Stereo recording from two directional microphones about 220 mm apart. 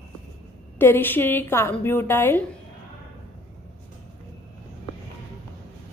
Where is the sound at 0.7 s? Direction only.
10° left (ahead or behind).